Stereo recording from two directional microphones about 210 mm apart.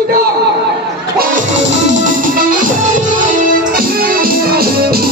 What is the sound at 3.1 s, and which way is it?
Music, 40° right (ahead or behind).